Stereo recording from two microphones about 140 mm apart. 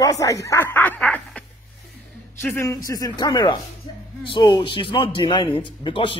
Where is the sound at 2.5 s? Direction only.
25° left (ahead or behind).